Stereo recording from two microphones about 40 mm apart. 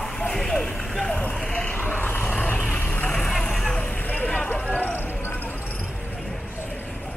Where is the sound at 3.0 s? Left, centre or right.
Left.